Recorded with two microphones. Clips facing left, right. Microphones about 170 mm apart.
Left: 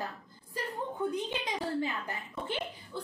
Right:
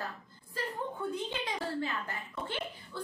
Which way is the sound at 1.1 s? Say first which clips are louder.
Left 2 dB; 15° left (ahead or behind).